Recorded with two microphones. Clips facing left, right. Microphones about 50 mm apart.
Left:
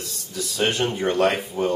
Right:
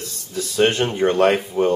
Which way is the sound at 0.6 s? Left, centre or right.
Centre.